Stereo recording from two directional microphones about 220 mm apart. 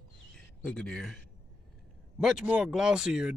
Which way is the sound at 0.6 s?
5° left (ahead or behind).